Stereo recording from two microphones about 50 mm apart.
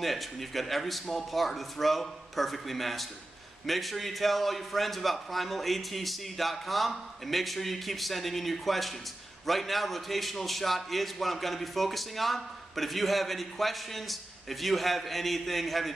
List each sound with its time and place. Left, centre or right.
0.0 s a man's voice: centre